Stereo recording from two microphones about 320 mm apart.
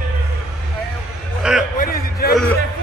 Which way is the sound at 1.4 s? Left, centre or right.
Centre.